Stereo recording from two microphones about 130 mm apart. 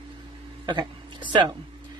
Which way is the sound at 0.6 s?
35° right (ahead or behind).